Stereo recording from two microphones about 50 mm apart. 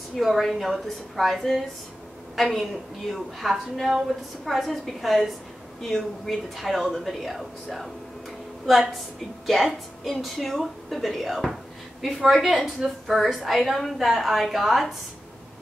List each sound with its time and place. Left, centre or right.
0.2 s speech: centre